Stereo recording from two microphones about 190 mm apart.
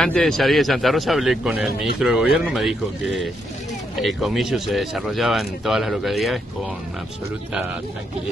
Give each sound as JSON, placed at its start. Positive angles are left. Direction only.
{"t": 0.0, "sound": "speech", "side_deg": 5}